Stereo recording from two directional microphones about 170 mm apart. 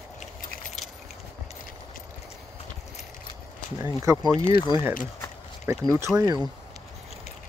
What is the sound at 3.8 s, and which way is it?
Speech, 20° right (ahead or behind).